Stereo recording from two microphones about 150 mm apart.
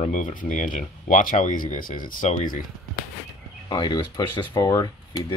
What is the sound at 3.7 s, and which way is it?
Speech, 30° left (ahead or behind).